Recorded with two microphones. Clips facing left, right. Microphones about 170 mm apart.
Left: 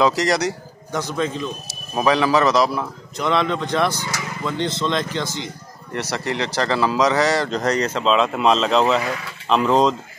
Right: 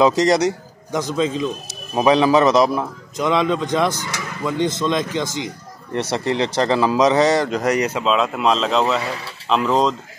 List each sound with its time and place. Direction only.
0.0 s a man's voice: 20° right (ahead or behind); by 9.9 s centre (ahead or behind)